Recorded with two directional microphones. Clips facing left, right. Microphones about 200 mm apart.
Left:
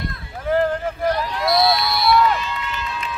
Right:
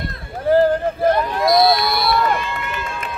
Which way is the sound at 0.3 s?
35° right (ahead or behind).